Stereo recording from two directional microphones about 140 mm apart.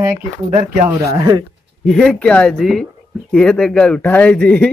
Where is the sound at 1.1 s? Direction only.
35° right (ahead or behind).